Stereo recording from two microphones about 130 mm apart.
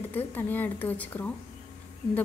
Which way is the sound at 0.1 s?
15° left (ahead or behind).